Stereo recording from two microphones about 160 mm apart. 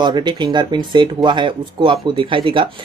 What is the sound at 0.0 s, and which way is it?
Speech, 30° right (ahead or behind).